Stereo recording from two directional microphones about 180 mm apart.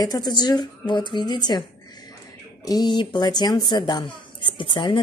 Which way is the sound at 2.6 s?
20° left (ahead or behind).